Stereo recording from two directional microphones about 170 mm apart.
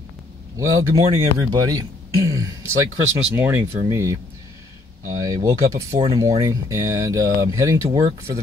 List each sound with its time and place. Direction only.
0.6 s speech: 20° right (ahead or behind)